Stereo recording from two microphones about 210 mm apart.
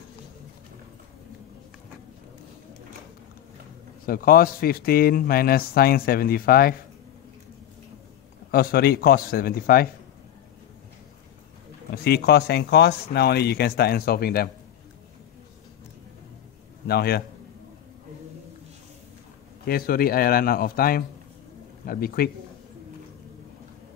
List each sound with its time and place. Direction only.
4.0 s a man's voice: 45° left (ahead or behind)
8.5 s a man's voice: 45° left (ahead or behind)
11.9 s a man's voice: 50° left (ahead or behind)
16.8 s a man's voice: 50° left (ahead or behind)
19.6 s a man's voice: 45° left (ahead or behind)